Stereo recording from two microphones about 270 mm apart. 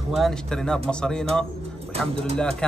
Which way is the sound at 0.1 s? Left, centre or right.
Centre.